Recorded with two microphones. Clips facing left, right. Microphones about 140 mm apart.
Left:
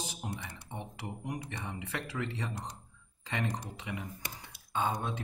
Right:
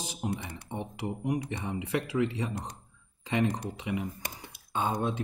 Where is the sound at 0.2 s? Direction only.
15° right (ahead or behind).